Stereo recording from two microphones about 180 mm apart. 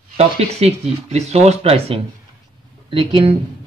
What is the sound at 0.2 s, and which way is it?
Speech, 35° right (ahead or behind).